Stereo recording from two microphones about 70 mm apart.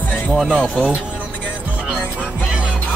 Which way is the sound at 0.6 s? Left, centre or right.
Centre.